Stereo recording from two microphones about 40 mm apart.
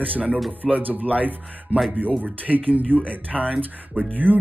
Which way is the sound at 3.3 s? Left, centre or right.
Centre.